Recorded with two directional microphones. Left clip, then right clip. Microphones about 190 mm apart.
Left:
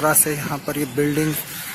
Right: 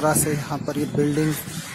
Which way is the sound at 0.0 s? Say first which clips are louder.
Left 2 dB; centre (ahead or behind).